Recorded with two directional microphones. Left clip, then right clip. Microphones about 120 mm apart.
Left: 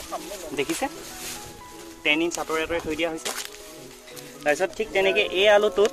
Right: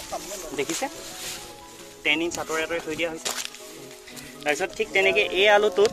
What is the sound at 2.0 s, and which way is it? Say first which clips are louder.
Speech: left 1 dB; 55° left (ahead or behind).